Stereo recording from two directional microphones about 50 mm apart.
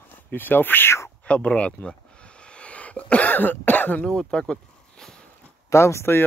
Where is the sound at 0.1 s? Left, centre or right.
Left.